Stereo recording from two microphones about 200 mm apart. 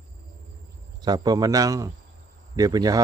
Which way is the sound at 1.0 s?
20° right (ahead or behind).